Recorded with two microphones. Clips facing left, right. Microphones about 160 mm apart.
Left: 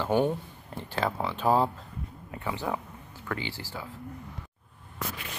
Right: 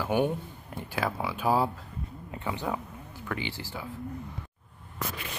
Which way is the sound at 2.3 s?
20° right (ahead or behind).